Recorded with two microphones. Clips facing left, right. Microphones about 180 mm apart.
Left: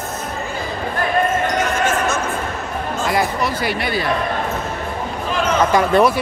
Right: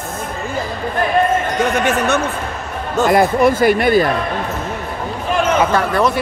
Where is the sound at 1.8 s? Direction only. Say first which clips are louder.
Right 3 dB; 65° right (ahead or behind).